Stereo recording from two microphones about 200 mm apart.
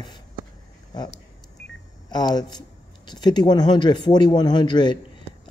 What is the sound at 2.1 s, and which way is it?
Speech, 20° left (ahead or behind).